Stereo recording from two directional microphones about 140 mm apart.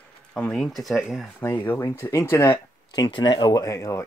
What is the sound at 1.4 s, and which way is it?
Speech, 15° left (ahead or behind).